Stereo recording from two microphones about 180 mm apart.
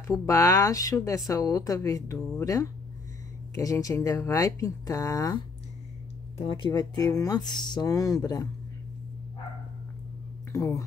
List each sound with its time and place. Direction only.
0.1 s speech: 20° left (ahead or behind)
6.3 s speech: 30° left (ahead or behind)
10.5 s speech: 15° left (ahead or behind)